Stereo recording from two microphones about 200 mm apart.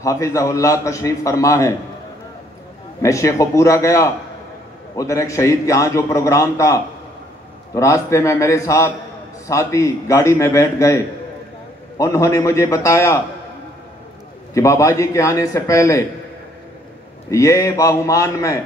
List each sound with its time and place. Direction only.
0.0 s a man's voice: 15° left (ahead or behind)
3.0 s a man's voice: 15° left (ahead or behind)
12.0 s a man's voice: 15° left (ahead or behind)
14.5 s a man's voice: 15° left (ahead or behind)
17.3 s a man's voice: 15° left (ahead or behind)